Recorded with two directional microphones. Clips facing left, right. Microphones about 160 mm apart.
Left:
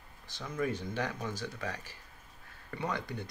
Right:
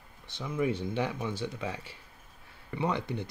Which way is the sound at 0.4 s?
15° right (ahead or behind).